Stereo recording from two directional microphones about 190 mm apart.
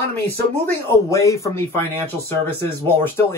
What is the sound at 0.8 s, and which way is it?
Speech, 15° left (ahead or behind).